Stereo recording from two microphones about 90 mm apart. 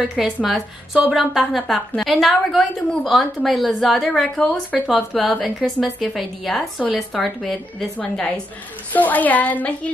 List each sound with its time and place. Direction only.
0.2 s a woman's voice: 5° right (ahead or behind); by 4.7 s 15° left (ahead or behind)
4.8 s a woman's voice: centre (ahead or behind)
8.0 s a woman's voice: 20° left (ahead or behind)